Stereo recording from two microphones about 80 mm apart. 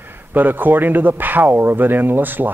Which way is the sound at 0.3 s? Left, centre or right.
Right.